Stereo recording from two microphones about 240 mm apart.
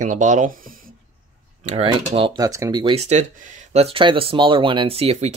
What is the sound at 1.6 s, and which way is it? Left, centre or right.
Speech, right.